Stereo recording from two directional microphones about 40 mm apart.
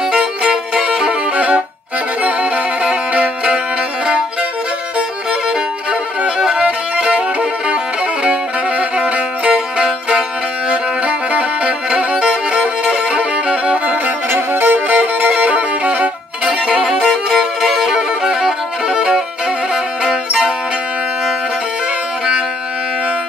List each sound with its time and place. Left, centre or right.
0.1 s music: right
0.8 s violin: right
2.5 s music: right
6.2 s music: right
11.1 s music: right
12.0 s violin: right
14.0 s music: right
16.6 s music: centre
17.6 s music: centre
17.9 s violin: centre
19.7 s music: centre